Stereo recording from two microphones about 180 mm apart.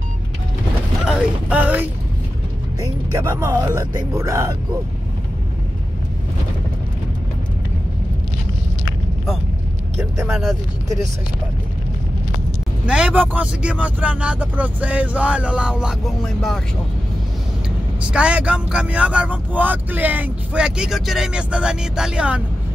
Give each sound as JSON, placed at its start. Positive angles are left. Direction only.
{"t": 1.0, "sound": "creak", "side_deg": -5}
{"t": 2.8, "sound": "speech", "side_deg": -15}
{"t": 12.8, "sound": "speech", "side_deg": -5}
{"t": 18.0, "sound": "speech", "side_deg": -5}